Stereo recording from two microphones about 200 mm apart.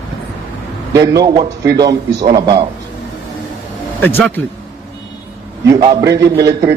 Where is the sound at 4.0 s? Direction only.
10° left (ahead or behind).